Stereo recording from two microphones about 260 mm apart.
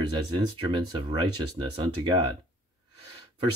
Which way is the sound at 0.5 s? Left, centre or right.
Centre.